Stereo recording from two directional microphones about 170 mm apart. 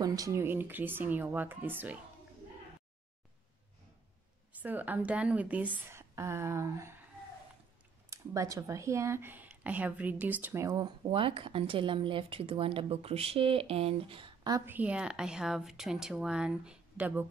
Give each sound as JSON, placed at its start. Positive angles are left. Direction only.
{"t": 0.0, "sound": "speech", "side_deg": -20}
{"t": 4.5, "sound": "a woman's voice", "side_deg": -10}
{"t": 8.1, "sound": "speech", "side_deg": -20}
{"t": 11.1, "sound": "speech", "side_deg": -30}
{"t": 14.7, "sound": "a woman's voice", "side_deg": -10}